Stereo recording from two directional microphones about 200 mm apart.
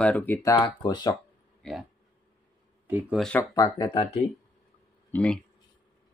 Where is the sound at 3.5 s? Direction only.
15° left (ahead or behind).